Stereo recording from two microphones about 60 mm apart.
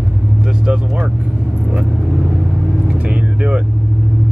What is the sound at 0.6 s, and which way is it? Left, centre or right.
Vehicle, centre.